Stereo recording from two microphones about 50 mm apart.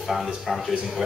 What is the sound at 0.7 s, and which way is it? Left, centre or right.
Speech, centre.